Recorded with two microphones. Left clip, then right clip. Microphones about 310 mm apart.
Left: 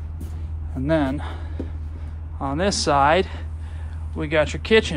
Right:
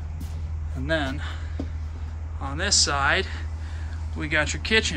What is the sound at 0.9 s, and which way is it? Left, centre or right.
Speech, centre.